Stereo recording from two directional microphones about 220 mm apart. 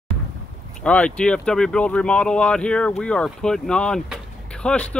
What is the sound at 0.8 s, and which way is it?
Speech, 5° left (ahead or behind).